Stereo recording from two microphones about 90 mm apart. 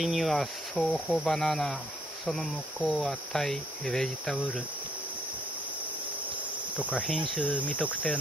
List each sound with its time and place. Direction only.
0.0 s cricket: centre (ahead or behind)
6.9 s cricket: 15° left (ahead or behind)